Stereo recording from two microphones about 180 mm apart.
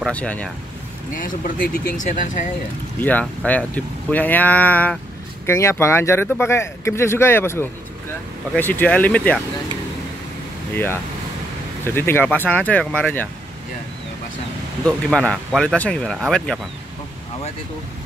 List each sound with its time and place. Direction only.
0.0 s speech: 5° left (ahead or behind)
1.2 s speech: 50° left (ahead or behind)
3.0 s speech: 10° left (ahead or behind)
10.7 s speech: 10° left (ahead or behind)
14.9 s speech: 5° left (ahead or behind)